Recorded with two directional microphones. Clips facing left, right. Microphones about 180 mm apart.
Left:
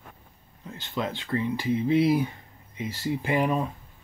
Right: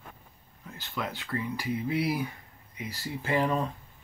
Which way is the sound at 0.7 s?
20° left (ahead or behind).